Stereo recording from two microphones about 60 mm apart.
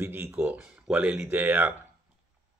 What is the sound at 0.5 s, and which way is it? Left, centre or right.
Speech, centre.